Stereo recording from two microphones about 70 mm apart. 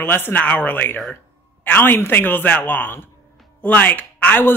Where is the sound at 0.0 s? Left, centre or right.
Left.